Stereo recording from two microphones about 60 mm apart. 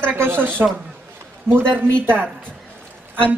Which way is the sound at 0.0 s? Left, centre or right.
Right.